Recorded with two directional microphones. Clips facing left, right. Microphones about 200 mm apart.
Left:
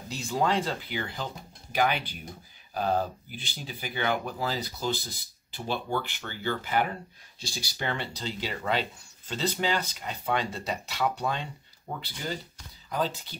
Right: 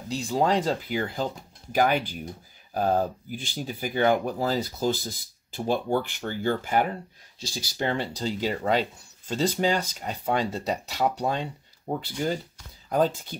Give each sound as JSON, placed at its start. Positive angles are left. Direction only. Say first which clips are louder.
{"t": 0.1, "sound": "speech", "louder": "right 4 dB", "side_deg": -35}